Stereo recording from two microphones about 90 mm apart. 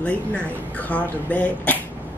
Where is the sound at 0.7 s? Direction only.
15° left (ahead or behind).